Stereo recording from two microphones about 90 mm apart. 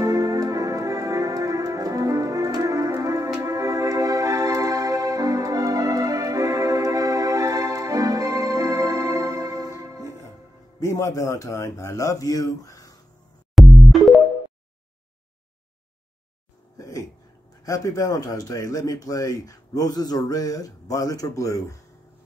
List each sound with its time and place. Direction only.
0.0 s music: 40° right (ahead or behind)
10.8 s a man's voice: 35° left (ahead or behind)
13.6 s music: centre (ahead or behind)
16.7 s a sound: 40° left (ahead or behind)
17.6 s speech: 40° left (ahead or behind)